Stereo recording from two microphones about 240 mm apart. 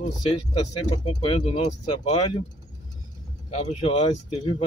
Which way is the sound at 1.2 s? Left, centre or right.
Left.